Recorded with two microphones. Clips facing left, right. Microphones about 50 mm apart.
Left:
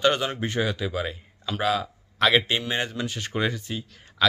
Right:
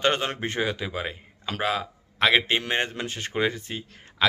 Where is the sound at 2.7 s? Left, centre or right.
Right.